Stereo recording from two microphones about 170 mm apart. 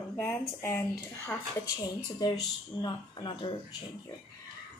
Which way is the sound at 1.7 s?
25° left (ahead or behind).